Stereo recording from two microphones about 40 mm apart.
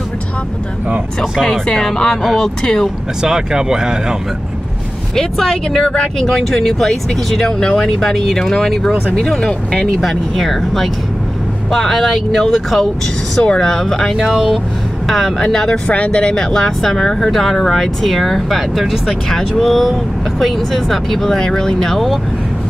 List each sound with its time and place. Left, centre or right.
2.2 s speech: centre
3.2 s speech: centre
5.1 s speech: centre
6.3 s speech: centre
10.0 s speech: centre
13.4 s speech: centre
14.1 s speech: centre
15.0 s speech: centre
15.3 s speech: centre
15.9 s speech: left
16.5 s speech: centre
19.2 s speech: centre